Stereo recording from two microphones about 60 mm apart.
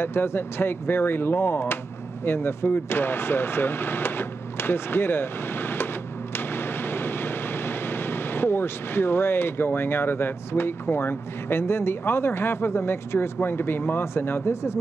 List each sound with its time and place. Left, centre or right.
0.0 s speech: left
6.3 s vehicle: left